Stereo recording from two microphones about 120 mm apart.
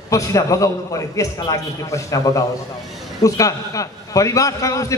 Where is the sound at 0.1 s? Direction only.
25° left (ahead or behind).